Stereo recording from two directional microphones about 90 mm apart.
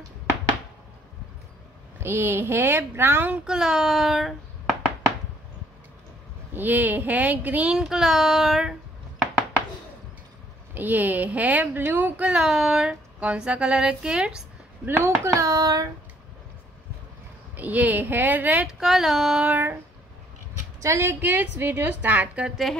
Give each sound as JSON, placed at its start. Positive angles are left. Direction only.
{"t": 2.0, "sound": "speech", "side_deg": -25}
{"t": 3.4, "sound": "a child's voice", "side_deg": -5}
{"t": 6.5, "sound": "speech", "side_deg": -20}
{"t": 7.7, "sound": "child singing", "side_deg": -5}
{"t": 10.7, "sound": "speech", "side_deg": -20}
{"t": 14.9, "sound": "speech", "side_deg": -30}
{"t": 17.6, "sound": "speech", "side_deg": -15}
{"t": 18.7, "sound": "child singing", "side_deg": -5}
{"t": 19.4, "sound": "speech", "side_deg": -20}
{"t": 20.8, "sound": "speech", "side_deg": -30}